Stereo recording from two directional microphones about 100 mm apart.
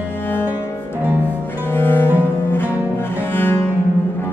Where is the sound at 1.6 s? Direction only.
20° left (ahead or behind).